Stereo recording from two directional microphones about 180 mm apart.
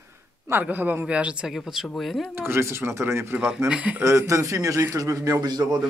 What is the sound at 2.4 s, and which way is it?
A man's voice, 15° right (ahead or behind).